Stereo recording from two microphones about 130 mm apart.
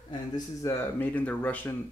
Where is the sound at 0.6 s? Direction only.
15° left (ahead or behind).